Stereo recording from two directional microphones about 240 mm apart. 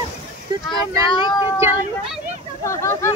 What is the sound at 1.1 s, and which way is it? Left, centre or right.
Speech, centre.